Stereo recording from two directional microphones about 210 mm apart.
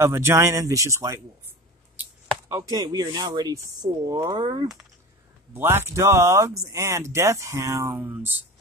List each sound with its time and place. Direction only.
0.0 s speech: 10° right (ahead or behind)
2.0 s chopping: 5° right (ahead or behind)
2.7 s speech: 15° right (ahead or behind)